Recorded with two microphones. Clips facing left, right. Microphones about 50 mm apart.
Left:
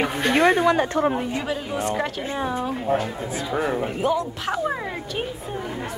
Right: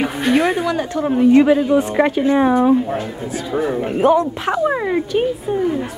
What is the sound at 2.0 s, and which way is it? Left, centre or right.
Speech, right.